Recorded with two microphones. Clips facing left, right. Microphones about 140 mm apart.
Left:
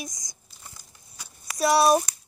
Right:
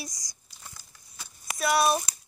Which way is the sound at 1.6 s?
35° left (ahead or behind).